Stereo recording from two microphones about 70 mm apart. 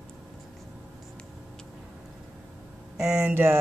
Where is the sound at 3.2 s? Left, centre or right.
Right.